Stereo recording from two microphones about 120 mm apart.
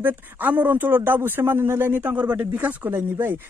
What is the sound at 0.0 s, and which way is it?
A man's voice, 15° right (ahead or behind).